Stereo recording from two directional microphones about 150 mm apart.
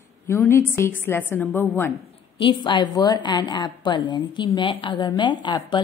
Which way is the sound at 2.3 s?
35° left (ahead or behind).